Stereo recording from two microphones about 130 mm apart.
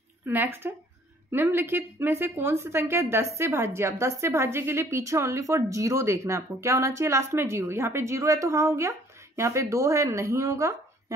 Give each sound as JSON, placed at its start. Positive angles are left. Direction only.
{"t": 0.3, "sound": "a woman's voice", "side_deg": -15}